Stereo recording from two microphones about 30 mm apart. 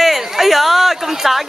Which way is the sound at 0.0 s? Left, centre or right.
Centre.